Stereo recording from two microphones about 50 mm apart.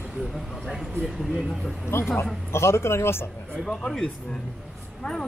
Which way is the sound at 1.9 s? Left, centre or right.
Left.